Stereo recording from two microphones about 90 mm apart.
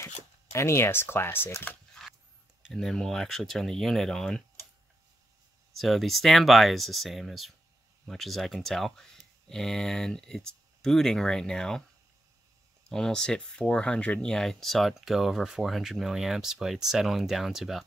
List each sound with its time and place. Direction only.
0.0 s speech: 30° left (ahead or behind)
2.7 s speech: 5° left (ahead or behind)
5.8 s speech: centre (ahead or behind)
12.9 s speech: 5° left (ahead or behind)